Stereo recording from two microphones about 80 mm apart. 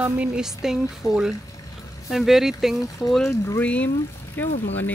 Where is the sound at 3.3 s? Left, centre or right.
Left.